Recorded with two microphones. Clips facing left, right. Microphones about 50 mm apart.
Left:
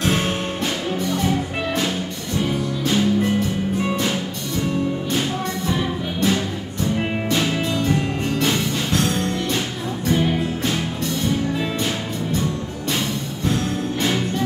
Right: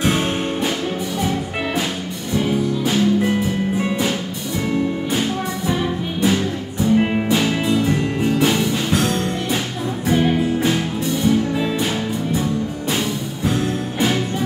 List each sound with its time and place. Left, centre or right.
2.3 s music: centre
5.7 s music: centre